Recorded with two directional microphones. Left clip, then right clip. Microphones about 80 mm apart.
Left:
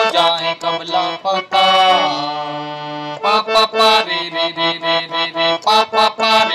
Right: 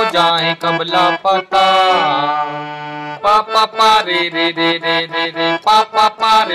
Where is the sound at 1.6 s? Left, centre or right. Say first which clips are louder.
Left 1 dB; centre.